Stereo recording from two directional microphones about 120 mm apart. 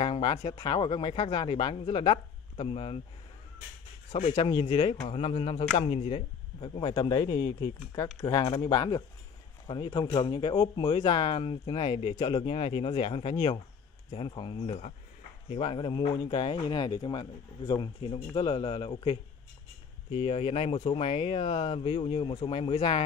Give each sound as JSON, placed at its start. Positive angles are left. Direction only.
{"t": 0.0, "sound": "speech", "side_deg": 50}
{"t": 4.1, "sound": "speech", "side_deg": 60}
{"t": 4.5, "sound": "speech", "side_deg": 45}